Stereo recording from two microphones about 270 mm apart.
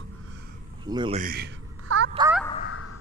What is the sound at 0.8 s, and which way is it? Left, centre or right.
Speech, centre.